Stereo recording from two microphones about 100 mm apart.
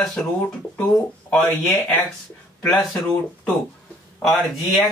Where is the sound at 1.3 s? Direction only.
20° left (ahead or behind).